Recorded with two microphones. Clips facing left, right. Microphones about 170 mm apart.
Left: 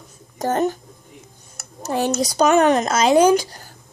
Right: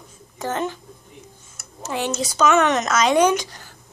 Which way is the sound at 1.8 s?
40° left (ahead or behind).